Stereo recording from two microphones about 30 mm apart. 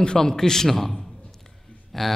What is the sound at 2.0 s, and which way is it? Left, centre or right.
Speech, centre.